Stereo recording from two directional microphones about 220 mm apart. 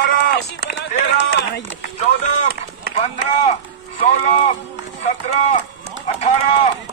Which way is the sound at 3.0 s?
30° left (ahead or behind).